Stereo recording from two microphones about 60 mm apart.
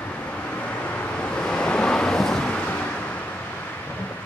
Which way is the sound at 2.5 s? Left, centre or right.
Left.